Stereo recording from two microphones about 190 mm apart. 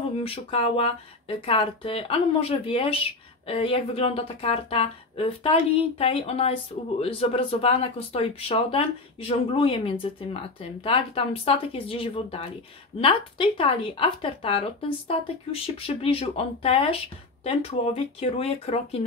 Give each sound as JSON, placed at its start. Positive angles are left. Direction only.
{"t": 0.2, "sound": "speech", "side_deg": 30}